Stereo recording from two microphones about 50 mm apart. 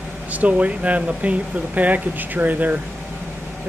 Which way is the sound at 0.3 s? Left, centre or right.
Right.